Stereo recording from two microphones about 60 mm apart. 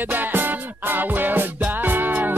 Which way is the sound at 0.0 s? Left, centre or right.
Right.